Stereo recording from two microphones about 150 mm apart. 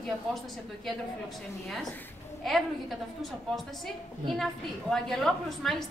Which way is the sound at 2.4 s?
Centre (ahead or behind).